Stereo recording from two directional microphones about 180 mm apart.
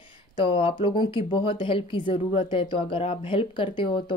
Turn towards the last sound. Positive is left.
turn(degrees=30)  # may be behind; listen again after turning